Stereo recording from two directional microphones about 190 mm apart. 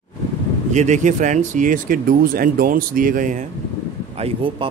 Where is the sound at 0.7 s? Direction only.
40° right (ahead or behind).